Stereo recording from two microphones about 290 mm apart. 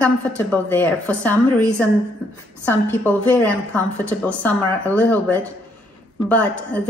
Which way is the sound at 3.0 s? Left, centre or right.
Centre.